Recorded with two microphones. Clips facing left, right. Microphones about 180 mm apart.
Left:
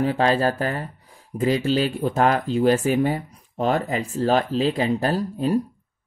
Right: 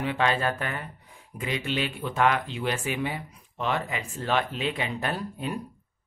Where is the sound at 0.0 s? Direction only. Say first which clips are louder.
Left 6 dB; 35° left (ahead or behind).